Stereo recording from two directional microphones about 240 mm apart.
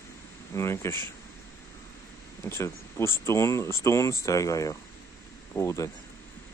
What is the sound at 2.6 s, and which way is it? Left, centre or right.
Speech, centre.